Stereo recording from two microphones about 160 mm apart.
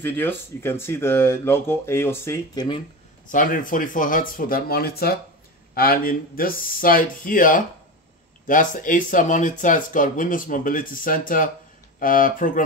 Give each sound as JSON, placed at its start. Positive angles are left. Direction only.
{"t": 0.0, "sound": "speech", "side_deg": 15}
{"t": 3.3, "sound": "speech", "side_deg": 55}